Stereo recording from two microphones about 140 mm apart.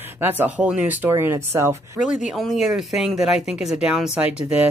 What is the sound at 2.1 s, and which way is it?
Speech, centre (ahead or behind).